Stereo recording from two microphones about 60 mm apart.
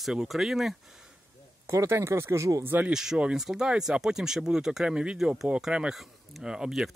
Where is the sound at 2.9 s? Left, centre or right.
Centre.